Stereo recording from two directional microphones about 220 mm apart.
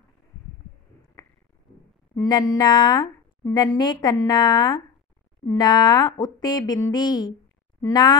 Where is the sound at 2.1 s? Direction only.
20° left (ahead or behind).